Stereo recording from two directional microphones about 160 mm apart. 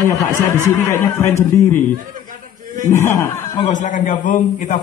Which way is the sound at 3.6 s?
50° left (ahead or behind).